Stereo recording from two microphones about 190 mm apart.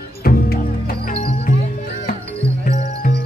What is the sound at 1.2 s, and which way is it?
Music, 30° left (ahead or behind).